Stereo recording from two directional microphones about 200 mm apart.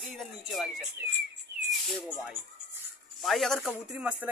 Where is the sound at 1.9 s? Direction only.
Centre (ahead or behind).